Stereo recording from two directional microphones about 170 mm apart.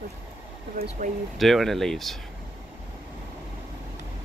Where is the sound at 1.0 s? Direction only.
50° right (ahead or behind).